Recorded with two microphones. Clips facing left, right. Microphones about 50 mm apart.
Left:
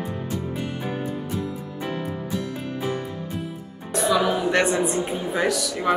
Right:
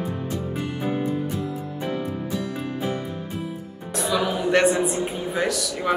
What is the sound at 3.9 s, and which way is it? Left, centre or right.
A woman's voice, centre.